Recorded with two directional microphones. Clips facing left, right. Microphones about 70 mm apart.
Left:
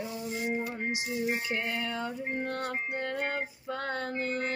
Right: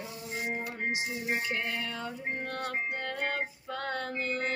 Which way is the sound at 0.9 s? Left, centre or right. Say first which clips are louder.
Even; right.